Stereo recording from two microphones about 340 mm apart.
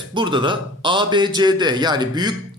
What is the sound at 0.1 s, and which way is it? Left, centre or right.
A man's voice, centre.